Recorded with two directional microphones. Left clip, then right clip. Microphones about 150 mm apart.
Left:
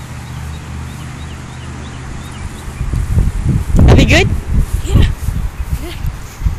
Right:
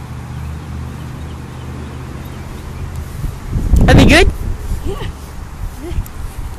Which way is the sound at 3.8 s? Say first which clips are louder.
Right 2 dB; 25° right (ahead or behind).